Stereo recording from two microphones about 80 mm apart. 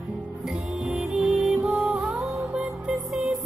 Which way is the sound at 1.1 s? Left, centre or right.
Centre.